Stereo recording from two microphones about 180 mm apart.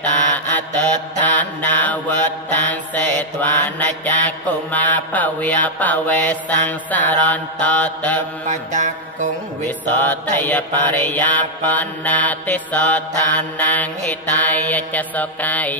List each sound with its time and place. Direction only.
0.3 s mantra: 10° left (ahead or behind)
8.5 s mantra: 45° right (ahead or behind)
9.8 s mantra: 10° left (ahead or behind)